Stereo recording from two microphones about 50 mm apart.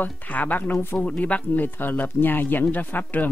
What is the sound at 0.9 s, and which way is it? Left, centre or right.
Speech, left.